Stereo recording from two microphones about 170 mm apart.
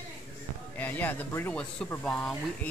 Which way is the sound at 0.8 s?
10° left (ahead or behind).